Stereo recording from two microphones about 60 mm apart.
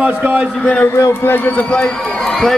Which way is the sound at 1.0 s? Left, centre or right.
Left.